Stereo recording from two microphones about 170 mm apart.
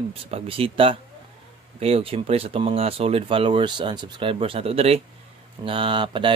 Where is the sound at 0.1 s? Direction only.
35° right (ahead or behind).